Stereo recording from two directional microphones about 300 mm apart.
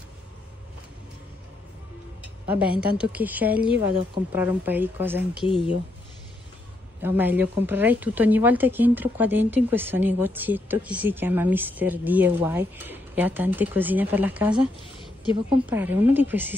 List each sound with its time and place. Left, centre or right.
2.4 s a woman's voice: centre
5.4 s speech: centre
7.0 s a woman's voice: centre